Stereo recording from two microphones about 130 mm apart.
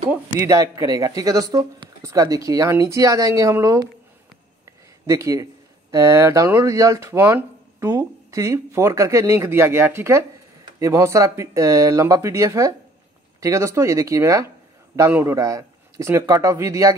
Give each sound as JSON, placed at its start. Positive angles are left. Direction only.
{"t": 0.4, "sound": "speech", "side_deg": -25}